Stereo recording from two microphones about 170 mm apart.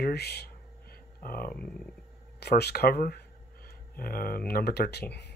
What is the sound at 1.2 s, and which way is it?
Speech, 60° left (ahead or behind).